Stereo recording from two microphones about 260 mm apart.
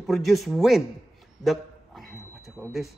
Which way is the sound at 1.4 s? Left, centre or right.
Centre.